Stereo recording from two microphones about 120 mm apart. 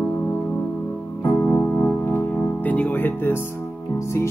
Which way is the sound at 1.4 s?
15° left (ahead or behind).